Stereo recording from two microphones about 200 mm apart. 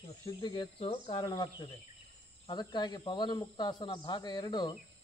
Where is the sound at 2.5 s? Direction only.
20° left (ahead or behind).